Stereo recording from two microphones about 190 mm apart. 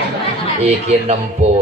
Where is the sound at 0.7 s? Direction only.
35° right (ahead or behind).